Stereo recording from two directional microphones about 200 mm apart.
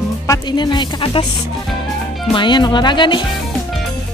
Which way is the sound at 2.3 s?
25° left (ahead or behind).